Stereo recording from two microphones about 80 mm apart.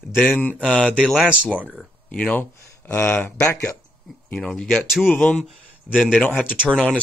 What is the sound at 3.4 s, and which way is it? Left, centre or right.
Speech, left.